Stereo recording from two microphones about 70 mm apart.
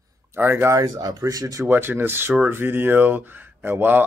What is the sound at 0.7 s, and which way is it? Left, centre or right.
Speech, right.